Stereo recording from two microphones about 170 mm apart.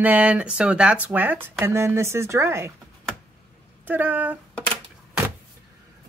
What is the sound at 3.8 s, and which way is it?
Speech, 10° right (ahead or behind).